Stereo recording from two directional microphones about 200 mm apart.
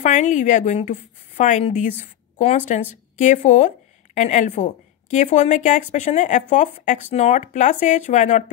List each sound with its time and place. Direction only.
0.0 s a woman's voice: 40° left (ahead or behind)
2.0 s a sound: 40° left (ahead or behind)
3.2 s a woman's voice: 40° left (ahead or behind)